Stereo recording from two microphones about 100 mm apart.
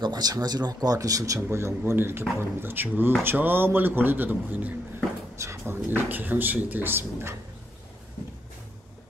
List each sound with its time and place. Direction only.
0.0 s a man's voice: 40° right (ahead or behind); by 7.3 s 20° right (ahead or behind)